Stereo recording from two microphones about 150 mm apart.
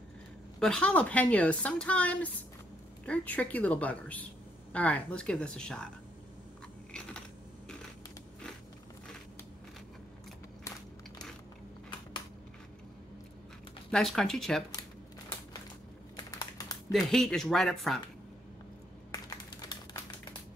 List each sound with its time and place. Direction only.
0.6 s speech: 5° left (ahead or behind)
6.9 s typing: 5° left (ahead or behind)
13.8 s speech: 5° left (ahead or behind)
16.2 s typing: 25° left (ahead or behind)
17.1 s speech: 5° left (ahead or behind)